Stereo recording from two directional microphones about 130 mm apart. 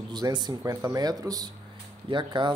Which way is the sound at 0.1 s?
35° right (ahead or behind).